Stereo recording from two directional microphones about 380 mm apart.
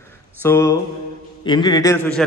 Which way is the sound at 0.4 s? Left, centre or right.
Centre.